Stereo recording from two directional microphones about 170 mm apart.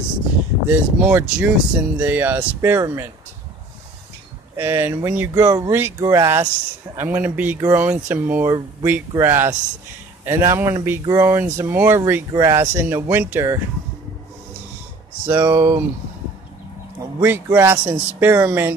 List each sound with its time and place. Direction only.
0.7 s speech: 10° right (ahead or behind)
4.6 s speech: 15° right (ahead or behind)
15.2 s speech: 10° right (ahead or behind)
17.2 s speech: 10° right (ahead or behind)